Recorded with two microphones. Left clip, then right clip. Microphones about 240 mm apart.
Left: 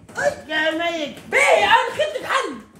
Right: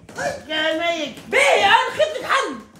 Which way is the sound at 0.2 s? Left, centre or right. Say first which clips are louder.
Left 4 dB; centre.